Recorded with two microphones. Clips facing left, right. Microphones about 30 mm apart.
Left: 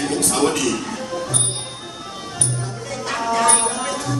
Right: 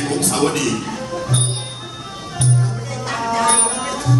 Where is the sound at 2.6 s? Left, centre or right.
Centre.